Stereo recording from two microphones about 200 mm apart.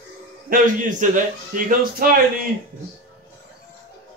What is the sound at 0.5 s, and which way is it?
A man's voice, 40° right (ahead or behind).